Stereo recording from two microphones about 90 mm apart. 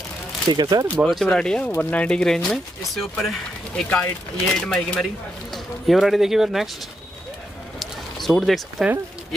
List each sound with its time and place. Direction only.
0.5 s speech: 50° right (ahead or behind)
1.0 s speech: 5° left (ahead or behind)
7.8 s a sound: centre (ahead or behind)